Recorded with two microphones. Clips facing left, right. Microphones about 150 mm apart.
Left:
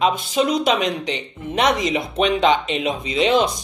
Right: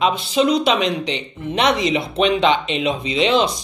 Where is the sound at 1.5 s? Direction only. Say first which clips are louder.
Right 1 dB; 45° left (ahead or behind).